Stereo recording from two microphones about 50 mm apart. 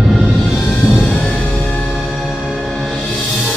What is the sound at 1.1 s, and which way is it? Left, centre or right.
Music, left.